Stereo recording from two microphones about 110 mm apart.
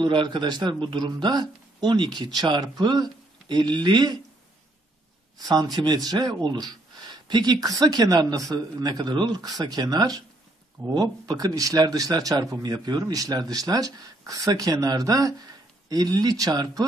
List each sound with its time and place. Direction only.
0.0 s speech: 45° right (ahead or behind)
5.5 s speech: 40° right (ahead or behind)